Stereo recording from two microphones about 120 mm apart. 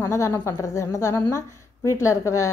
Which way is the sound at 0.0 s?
25° left (ahead or behind).